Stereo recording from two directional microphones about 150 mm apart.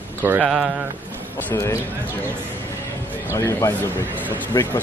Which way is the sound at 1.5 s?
20° left (ahead or behind).